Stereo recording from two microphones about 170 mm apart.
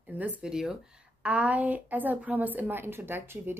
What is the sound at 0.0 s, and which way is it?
A woman's voice, 10° right (ahead or behind).